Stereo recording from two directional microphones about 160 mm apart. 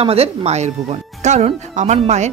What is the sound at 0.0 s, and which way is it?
Speech, 40° right (ahead or behind).